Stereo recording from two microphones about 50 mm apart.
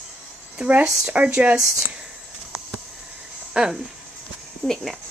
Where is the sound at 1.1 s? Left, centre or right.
Right.